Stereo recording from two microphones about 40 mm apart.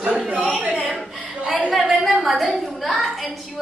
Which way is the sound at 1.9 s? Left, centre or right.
Centre.